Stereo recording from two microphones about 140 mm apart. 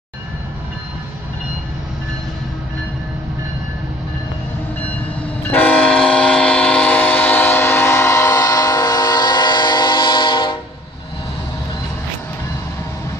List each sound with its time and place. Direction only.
5.5 s train: 10° left (ahead or behind); by 10.6 s 35° left (ahead or behind)